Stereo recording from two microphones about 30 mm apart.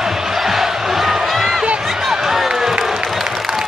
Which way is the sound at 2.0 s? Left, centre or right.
Centre.